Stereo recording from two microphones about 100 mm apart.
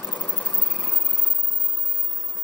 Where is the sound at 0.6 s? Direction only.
15° left (ahead or behind).